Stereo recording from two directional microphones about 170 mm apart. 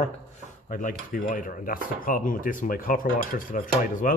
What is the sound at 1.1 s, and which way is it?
Speech, 55° left (ahead or behind).